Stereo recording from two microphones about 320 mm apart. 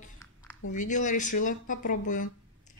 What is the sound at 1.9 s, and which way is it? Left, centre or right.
Speech, left.